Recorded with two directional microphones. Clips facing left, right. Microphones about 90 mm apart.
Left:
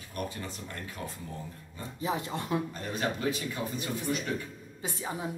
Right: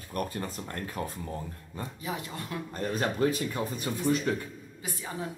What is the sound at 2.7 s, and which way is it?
Speech, 40° right (ahead or behind).